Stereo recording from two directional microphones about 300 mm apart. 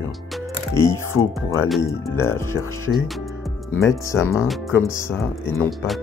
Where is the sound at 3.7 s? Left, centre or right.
Centre.